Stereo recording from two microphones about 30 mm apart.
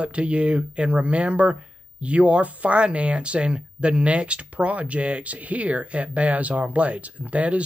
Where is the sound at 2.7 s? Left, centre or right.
Right.